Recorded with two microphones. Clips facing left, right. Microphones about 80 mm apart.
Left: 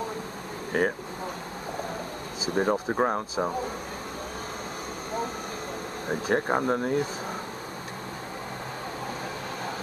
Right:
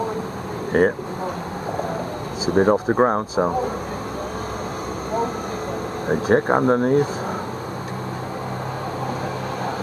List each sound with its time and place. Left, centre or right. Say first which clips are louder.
0.7 s speech: right 8 dB; right
2.5 s speech: right 8 dB; right
6.0 s speech: right 8 dB; right